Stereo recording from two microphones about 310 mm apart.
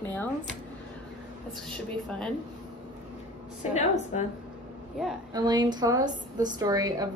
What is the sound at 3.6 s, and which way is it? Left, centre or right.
Speech, left.